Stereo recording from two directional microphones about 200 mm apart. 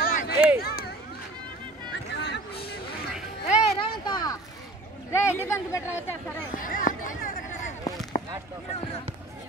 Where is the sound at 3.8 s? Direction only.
20° left (ahead or behind).